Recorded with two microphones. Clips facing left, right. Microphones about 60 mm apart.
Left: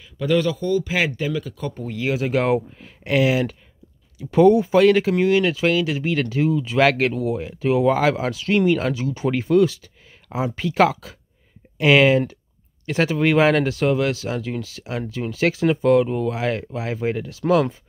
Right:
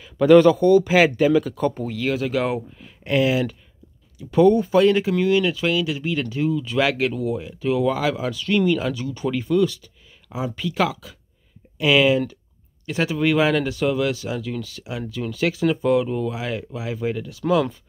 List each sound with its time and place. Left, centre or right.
0.0 s speech: centre
0.8 s speech: centre
2.0 s speech: centre
2.3 s speech: left